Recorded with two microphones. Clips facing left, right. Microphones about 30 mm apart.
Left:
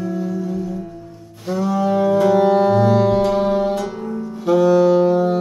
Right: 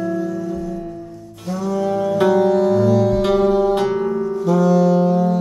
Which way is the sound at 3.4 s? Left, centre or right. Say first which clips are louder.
Right 2 dB; centre.